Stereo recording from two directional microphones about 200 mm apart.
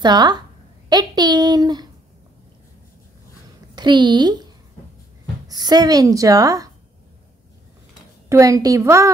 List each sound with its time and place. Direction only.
0.0 s a woman's voice: 20° right (ahead or behind)
3.7 s a woman's voice: 20° right (ahead or behind)
5.5 s a woman's voice: 20° right (ahead or behind)
8.3 s a child's voice: 15° right (ahead or behind)